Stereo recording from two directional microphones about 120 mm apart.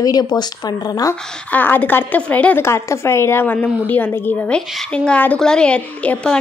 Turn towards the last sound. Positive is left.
turn(degrees=10)  # may be behind; listen again after turning